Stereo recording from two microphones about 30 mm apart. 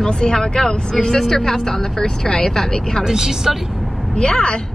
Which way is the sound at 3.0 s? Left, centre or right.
Centre.